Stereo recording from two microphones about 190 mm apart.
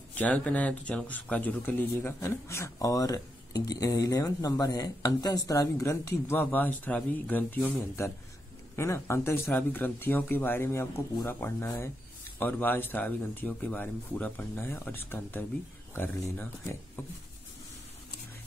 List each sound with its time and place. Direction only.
0.1 s speech: 10° left (ahead or behind)